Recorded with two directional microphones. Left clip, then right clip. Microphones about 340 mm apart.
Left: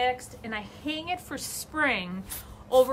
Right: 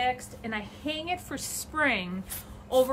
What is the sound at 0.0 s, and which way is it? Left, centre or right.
Speech, centre.